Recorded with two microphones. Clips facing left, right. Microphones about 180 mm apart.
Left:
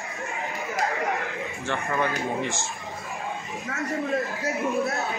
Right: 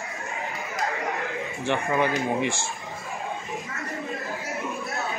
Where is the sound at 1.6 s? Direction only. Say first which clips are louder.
Right 3 dB; 15° right (ahead or behind).